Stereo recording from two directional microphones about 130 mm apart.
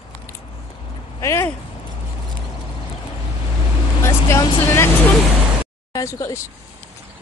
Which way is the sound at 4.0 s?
20° left (ahead or behind).